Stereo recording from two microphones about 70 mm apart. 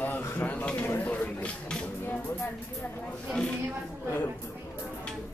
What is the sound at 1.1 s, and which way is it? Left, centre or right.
Speech, centre.